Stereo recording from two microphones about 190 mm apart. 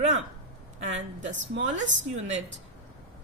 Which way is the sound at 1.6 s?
40° right (ahead or behind).